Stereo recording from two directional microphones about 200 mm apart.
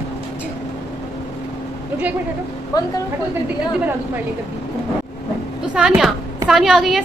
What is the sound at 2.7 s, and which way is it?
Speech, 20° left (ahead or behind).